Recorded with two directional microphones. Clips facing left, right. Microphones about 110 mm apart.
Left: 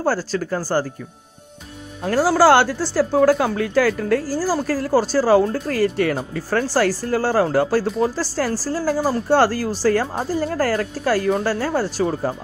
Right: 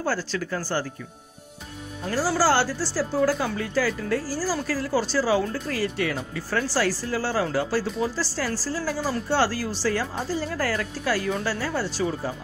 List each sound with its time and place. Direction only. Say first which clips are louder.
0.0 s speech: left 6 dB; 40° left (ahead or behind)
2.0 s speech: left 8 dB; 60° left (ahead or behind)